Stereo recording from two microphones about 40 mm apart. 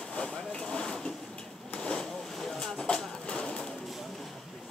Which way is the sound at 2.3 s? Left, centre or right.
Centre.